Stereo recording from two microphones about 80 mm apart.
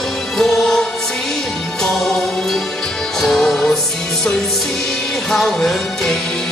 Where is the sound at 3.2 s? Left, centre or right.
Centre.